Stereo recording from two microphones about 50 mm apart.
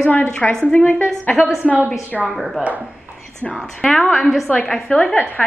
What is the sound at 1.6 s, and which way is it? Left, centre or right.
Speech, right.